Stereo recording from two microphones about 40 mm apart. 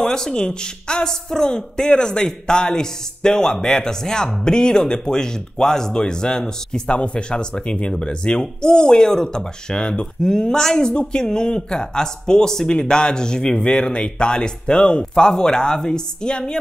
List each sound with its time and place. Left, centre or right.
0.0 s a woman's voice: centre